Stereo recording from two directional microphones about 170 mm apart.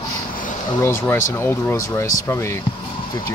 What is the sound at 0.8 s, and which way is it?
Speech, 15° left (ahead or behind).